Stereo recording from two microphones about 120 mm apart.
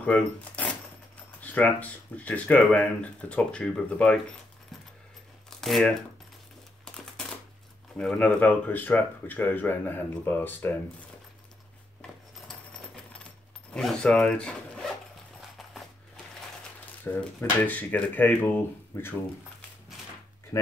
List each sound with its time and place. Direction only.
0.0 s speech: 10° left (ahead or behind)
5.5 s speech: 5° left (ahead or behind)
6.8 s a sound: 5° left (ahead or behind)
8.0 s speech: 5° left (ahead or behind)
12.4 s a sound: 5° left (ahead or behind)
13.7 s speech: 5° left (ahead or behind)
17.0 s speech: 15° left (ahead or behind)